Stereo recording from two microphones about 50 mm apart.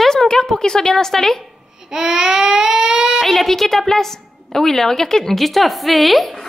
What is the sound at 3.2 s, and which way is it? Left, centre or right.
A woman's voice, centre.